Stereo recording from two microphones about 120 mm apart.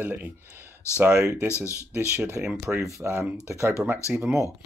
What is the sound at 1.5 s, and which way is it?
Speech, 25° left (ahead or behind).